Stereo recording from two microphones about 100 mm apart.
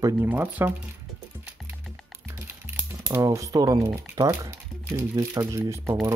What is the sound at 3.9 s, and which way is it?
Speech, 25° right (ahead or behind).